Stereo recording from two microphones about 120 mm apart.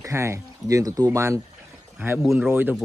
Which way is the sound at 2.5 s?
15° right (ahead or behind).